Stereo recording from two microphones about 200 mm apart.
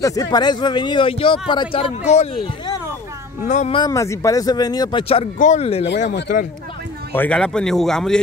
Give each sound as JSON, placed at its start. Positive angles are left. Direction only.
{"t": 0.0, "sound": "speech", "side_deg": 15}
{"t": 3.7, "sound": "speech", "side_deg": 20}
{"t": 7.1, "sound": "speech", "side_deg": 10}